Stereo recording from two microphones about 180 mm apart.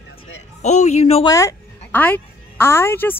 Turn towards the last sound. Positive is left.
turn(degrees=10)  # may be behind; listen again after turning